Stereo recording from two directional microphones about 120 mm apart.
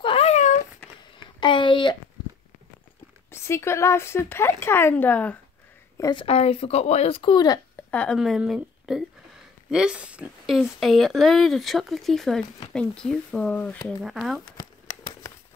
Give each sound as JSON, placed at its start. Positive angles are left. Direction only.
{"t": 0.0, "sound": "a sound", "side_deg": 55}
{"t": 1.4, "sound": "a sound", "side_deg": 45}
{"t": 3.3, "sound": "speech", "side_deg": 20}
{"t": 6.1, "sound": "speech", "side_deg": 55}
{"t": 7.9, "sound": "speech", "side_deg": 10}
{"t": 8.2, "sound": "speech", "side_deg": -5}